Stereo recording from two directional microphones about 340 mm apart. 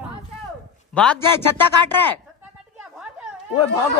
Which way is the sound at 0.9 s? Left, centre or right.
Centre.